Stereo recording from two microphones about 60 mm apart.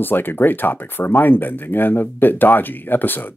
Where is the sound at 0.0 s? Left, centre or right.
Left.